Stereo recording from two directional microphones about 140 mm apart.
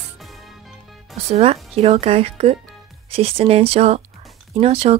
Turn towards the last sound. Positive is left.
turn(degrees=-45)  # may be behind; listen again after turning